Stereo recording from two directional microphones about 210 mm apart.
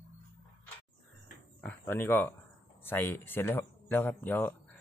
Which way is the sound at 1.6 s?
10° left (ahead or behind).